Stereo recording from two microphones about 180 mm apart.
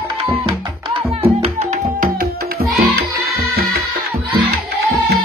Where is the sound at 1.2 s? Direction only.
35° right (ahead or behind).